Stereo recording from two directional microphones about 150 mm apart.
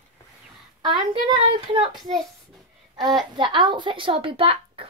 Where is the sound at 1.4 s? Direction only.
40° right (ahead or behind).